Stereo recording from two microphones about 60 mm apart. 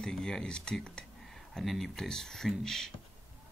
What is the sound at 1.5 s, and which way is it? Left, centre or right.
A man's voice, centre.